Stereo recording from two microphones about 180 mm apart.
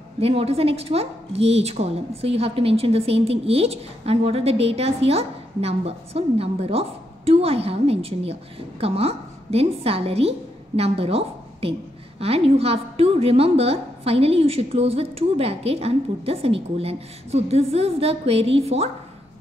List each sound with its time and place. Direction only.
0.2 s a woman's voice: 35° right (ahead or behind)